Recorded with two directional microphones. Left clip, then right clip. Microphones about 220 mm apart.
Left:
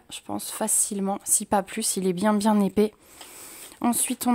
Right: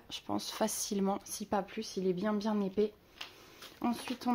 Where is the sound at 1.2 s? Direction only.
40° left (ahead or behind).